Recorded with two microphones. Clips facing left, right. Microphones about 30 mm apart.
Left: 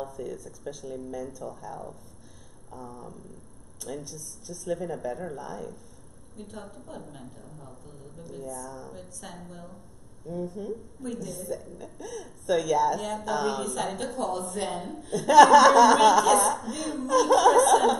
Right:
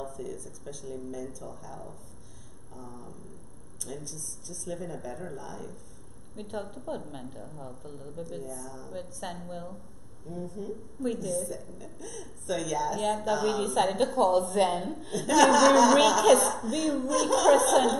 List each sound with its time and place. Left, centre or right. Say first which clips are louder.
0.0 s speech: left 2 dB; centre
6.6 s a woman's voice: right 5 dB; centre
8.9 s a woman's voice: right 5 dB; centre
10.2 s speech: left 4 dB; centre
13.0 s a woman's voice: right 4 dB; centre
13.3 s speech: left 2 dB; centre
13.6 s a woman's voice: right 5 dB; centre
15.2 s speech: left 5 dB; centre